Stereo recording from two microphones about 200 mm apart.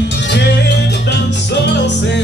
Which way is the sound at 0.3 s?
55° left (ahead or behind).